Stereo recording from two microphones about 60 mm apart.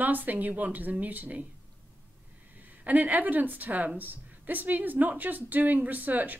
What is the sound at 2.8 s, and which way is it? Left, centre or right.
A woman's voice, right.